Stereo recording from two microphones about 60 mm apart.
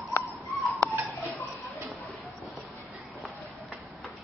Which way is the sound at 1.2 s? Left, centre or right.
Right.